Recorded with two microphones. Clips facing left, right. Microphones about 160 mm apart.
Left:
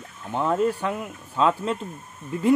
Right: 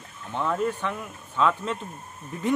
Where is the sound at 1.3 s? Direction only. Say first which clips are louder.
Left 2 dB; 35° left (ahead or behind).